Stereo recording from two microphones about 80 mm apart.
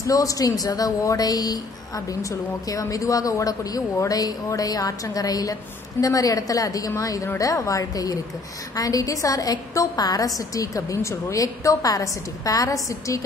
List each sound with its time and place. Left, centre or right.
0.0 s speech: left
2.7 s speech: left